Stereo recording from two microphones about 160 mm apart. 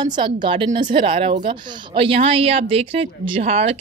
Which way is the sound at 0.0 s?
30° right (ahead or behind).